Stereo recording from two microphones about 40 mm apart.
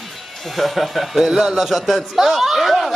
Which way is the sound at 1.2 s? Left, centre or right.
Centre.